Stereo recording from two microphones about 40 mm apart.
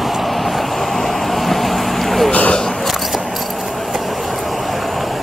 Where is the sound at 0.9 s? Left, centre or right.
Centre.